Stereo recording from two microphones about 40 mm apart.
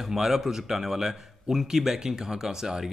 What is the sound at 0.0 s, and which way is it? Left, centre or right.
A man's voice, centre.